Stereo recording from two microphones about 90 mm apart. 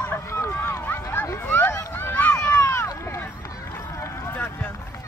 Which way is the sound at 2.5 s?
30° left (ahead or behind).